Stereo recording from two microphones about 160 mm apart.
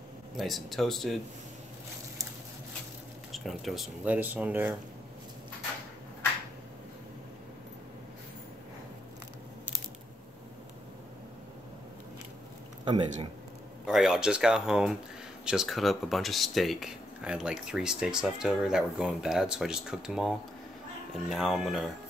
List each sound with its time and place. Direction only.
0.4 s speech: centre (ahead or behind)
3.3 s speech: centre (ahead or behind)
12.8 s speech: 30° right (ahead or behind)
13.8 s speech: centre (ahead or behind)